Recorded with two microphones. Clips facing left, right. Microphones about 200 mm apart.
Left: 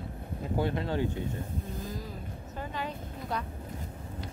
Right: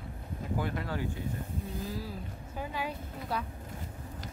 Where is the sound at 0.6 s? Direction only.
25° left (ahead or behind).